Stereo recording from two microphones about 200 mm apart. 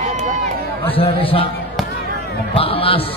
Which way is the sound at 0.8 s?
25° left (ahead or behind).